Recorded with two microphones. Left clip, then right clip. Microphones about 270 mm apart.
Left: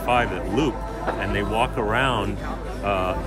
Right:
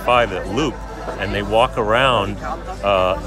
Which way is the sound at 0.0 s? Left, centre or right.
Centre.